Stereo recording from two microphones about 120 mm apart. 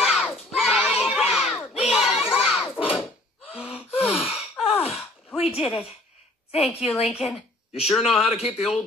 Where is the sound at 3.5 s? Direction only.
5° right (ahead or behind).